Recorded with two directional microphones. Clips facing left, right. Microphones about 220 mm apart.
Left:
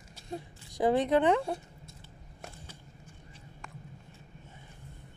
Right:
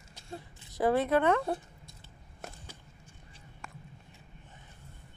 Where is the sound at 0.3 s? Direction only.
15° left (ahead or behind).